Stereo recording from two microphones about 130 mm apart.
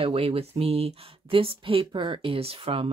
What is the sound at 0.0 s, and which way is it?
Speech, 45° right (ahead or behind).